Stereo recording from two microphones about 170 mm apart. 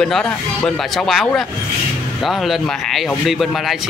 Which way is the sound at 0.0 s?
Centre (ahead or behind).